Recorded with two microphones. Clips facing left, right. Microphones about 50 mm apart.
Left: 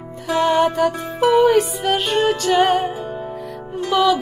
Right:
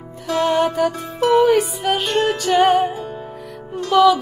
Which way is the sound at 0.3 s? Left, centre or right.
Centre.